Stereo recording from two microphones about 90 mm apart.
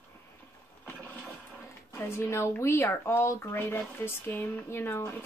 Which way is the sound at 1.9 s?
30° left (ahead or behind).